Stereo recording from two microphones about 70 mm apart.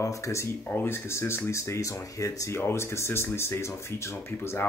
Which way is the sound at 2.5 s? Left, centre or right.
Left.